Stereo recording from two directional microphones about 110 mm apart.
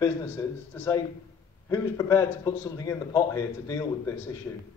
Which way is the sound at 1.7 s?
30° left (ahead or behind).